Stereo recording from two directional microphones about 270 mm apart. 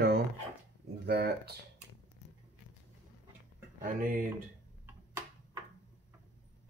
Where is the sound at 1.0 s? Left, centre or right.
Right.